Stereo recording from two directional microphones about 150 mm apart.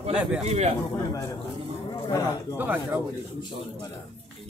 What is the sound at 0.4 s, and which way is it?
Speech, 45° right (ahead or behind).